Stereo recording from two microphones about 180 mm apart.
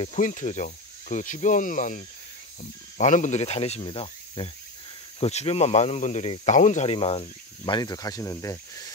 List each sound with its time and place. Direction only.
0.0 s speech: 40° left (ahead or behind); by 8.9 s 20° left (ahead or behind)